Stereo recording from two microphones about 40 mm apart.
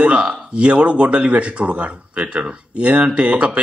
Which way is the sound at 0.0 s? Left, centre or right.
Right.